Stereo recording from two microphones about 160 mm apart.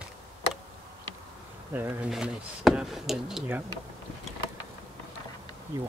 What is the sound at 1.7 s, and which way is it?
Speech, 10° right (ahead or behind).